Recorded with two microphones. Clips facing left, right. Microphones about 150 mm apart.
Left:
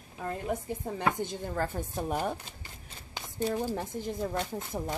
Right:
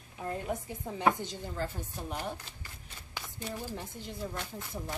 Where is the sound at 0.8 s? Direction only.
50° left (ahead or behind).